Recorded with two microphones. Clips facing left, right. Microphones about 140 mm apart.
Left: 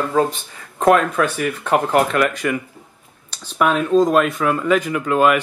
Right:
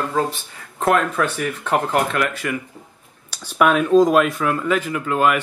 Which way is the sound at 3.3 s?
5° right (ahead or behind).